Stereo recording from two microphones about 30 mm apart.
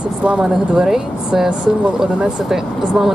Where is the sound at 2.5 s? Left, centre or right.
Centre.